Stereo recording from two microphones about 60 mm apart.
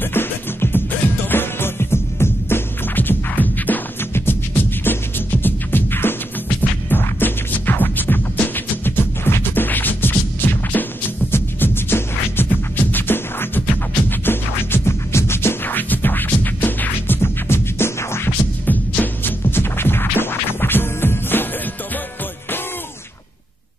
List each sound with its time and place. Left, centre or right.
0.0 s music: left
18.7 s music: left
19.4 s music: left